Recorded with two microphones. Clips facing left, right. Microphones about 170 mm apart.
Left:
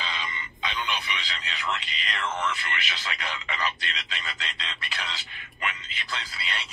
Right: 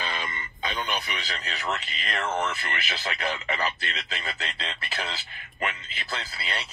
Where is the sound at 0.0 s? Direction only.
50° right (ahead or behind).